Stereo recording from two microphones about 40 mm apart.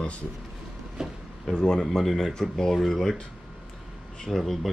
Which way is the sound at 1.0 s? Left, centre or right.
Centre.